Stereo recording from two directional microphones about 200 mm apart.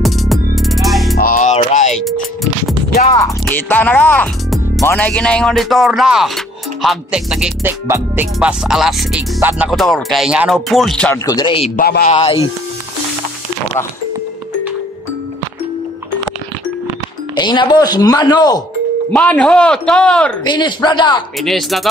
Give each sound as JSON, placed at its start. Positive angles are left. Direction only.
{"t": 0.0, "sound": "music", "side_deg": 0}
{"t": 1.1, "sound": "music", "side_deg": 45}
{"t": 3.2, "sound": "speech", "side_deg": 10}
{"t": 9.7, "sound": "speech", "side_deg": 0}
{"t": 11.2, "sound": "speech", "side_deg": 20}
{"t": 11.7, "sound": "speech", "side_deg": 45}
{"t": 12.1, "sound": "speech", "side_deg": 25}
{"t": 17.4, "sound": "speech", "side_deg": 20}
{"t": 19.1, "sound": "speech", "side_deg": 5}
{"t": 20.4, "sound": "speech", "side_deg": 20}
{"t": 21.4, "sound": "speech", "side_deg": 0}